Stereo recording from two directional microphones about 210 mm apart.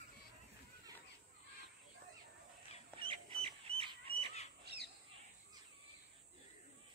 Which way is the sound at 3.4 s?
25° right (ahead or behind).